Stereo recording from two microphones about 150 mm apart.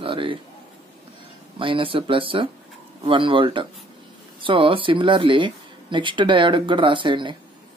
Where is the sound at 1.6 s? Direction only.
35° right (ahead or behind).